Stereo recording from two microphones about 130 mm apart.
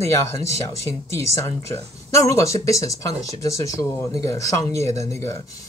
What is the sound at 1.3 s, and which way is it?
Speech, 25° left (ahead or behind).